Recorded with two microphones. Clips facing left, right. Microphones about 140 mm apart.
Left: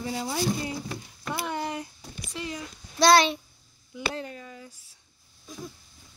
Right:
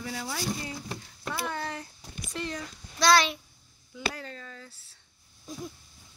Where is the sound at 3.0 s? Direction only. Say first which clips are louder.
Left 4 dB; 25° left (ahead or behind).